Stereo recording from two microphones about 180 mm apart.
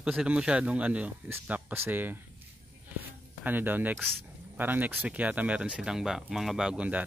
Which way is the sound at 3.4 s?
10° right (ahead or behind).